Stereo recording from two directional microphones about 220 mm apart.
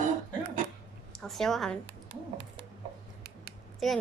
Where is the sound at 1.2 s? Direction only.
Centre (ahead or behind).